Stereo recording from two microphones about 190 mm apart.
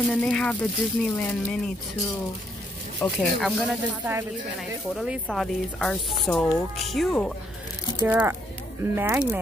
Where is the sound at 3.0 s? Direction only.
5° left (ahead or behind).